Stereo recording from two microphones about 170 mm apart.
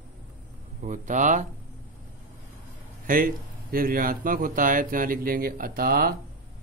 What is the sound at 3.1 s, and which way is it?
Speech, 55° right (ahead or behind).